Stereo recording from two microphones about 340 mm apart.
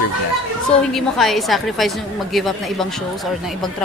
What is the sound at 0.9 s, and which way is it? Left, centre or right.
A woman's voice, centre.